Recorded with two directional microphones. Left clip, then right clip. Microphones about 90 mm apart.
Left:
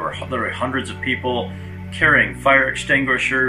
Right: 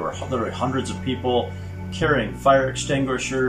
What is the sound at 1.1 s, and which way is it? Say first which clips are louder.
Speech: left 10 dB; 40° right (ahead or behind).